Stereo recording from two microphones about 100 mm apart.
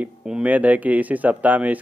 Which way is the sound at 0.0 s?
15° right (ahead or behind).